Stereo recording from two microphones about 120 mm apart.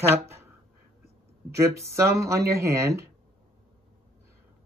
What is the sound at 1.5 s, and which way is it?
Speech, 25° right (ahead or behind).